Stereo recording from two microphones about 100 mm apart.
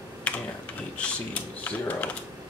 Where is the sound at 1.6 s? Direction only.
15° left (ahead or behind).